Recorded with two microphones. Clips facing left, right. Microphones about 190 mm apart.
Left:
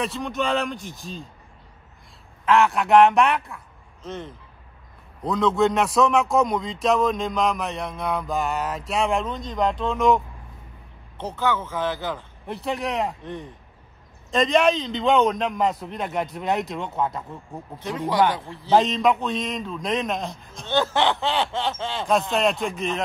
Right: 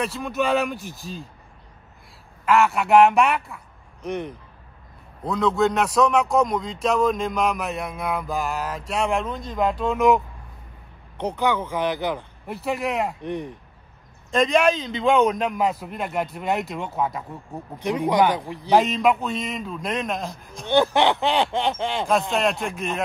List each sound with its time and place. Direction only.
0.0 s a man's voice: centre (ahead or behind)
2.4 s a man's voice: centre (ahead or behind)
4.0 s speech: 15° right (ahead or behind)
5.2 s a man's voice: centre (ahead or behind)
11.1 s speech: 15° right (ahead or behind)
12.4 s a man's voice: centre (ahead or behind)
13.2 s speech: 20° right (ahead or behind)
14.3 s a man's voice: centre (ahead or behind)
17.7 s speech: 15° right (ahead or behind)
18.8 s a man's voice: centre (ahead or behind)
20.6 s speech: 15° right (ahead or behind)
22.3 s a man's voice: centre (ahead or behind)